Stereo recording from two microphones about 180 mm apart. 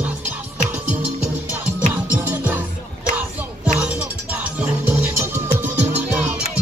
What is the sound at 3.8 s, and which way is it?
Music, 5° right (ahead or behind).